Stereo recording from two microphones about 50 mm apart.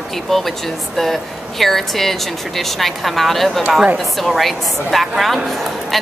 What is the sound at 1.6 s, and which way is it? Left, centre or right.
A woman's voice, centre.